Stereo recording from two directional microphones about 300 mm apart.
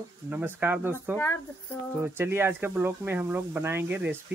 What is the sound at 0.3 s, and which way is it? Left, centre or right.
Speech, centre.